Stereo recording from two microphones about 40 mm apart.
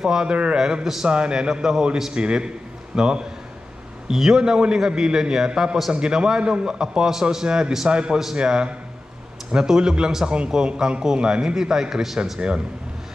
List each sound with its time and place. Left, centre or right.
0.0 s a man's voice: centre
0.3 s a man's voice: right
4.1 s a man's voice: centre
7.4 s a man's voice: right
12.4 s a man's voice: right